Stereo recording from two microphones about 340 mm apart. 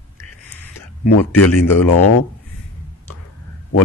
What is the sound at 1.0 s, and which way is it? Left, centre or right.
Speech, left.